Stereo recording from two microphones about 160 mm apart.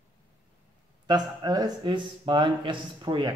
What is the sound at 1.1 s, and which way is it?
A man's voice, 25° right (ahead or behind).